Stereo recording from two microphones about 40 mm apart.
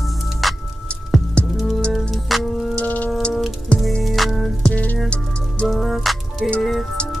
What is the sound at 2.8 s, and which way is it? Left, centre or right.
Music, left.